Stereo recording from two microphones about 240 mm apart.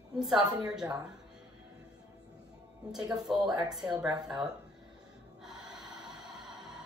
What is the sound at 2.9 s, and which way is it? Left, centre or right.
Speech, centre.